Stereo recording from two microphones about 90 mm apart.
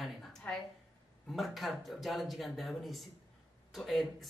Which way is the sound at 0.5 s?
15° left (ahead or behind).